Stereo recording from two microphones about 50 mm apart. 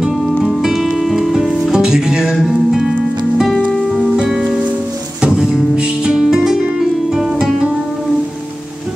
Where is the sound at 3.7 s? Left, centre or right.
Centre.